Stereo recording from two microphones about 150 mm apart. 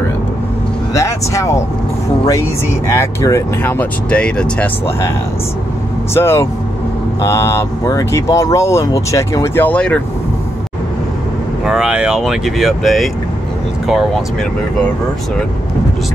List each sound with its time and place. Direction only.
0.9 s speech: 20° left (ahead or behind)
2.9 s speech: 20° left (ahead or behind)
6.1 s speech: 15° left (ahead or behind)
11.6 s speech: 5° right (ahead or behind)